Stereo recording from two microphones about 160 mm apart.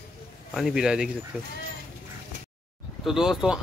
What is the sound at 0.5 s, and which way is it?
Speech, centre (ahead or behind).